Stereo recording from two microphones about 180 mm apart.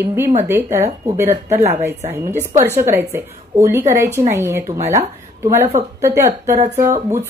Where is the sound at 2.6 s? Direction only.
15° right (ahead or behind).